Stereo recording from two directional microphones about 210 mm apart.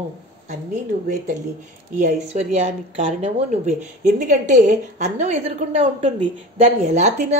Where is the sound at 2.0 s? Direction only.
35° right (ahead or behind).